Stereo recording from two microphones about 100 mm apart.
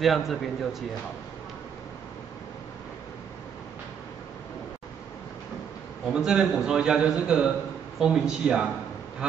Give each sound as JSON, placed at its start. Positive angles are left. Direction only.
{"t": 0.0, "sound": "speech", "side_deg": 0}
{"t": 6.1, "sound": "a man's voice", "side_deg": -5}